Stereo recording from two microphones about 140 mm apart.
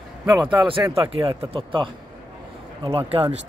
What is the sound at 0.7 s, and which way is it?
Speech, 40° right (ahead or behind).